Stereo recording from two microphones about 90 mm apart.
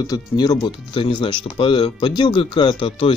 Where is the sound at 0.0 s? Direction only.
45° left (ahead or behind).